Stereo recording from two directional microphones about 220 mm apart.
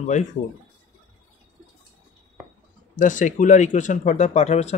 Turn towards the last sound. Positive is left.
turn(degrees=30)  # may be behind; listen again after turning